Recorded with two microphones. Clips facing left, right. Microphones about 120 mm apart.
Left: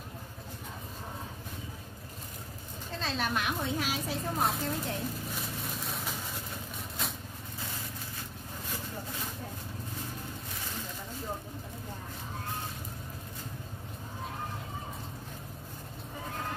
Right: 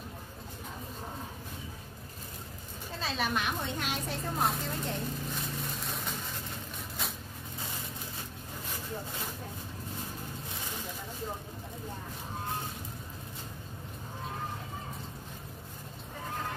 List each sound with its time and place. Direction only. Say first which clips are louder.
3.0 s a woman's voice: even; centre (ahead or behind)